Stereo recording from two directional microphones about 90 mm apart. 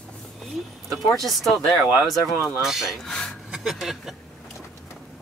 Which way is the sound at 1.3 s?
Centre (ahead or behind).